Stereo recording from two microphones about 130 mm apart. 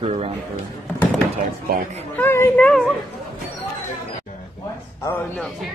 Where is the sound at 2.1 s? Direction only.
20° left (ahead or behind).